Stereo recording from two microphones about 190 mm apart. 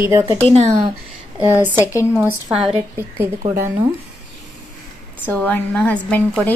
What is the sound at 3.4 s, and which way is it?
Speech, 25° right (ahead or behind).